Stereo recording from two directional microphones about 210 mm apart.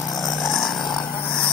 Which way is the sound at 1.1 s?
5° left (ahead or behind).